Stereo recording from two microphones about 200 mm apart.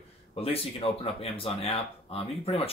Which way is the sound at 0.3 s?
30° left (ahead or behind).